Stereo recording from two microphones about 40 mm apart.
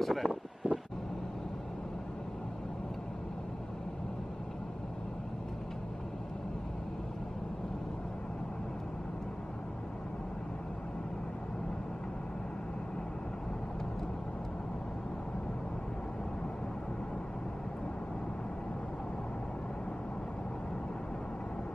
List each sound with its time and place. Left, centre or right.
0.0 s speech: centre
0.6 s vehicle: right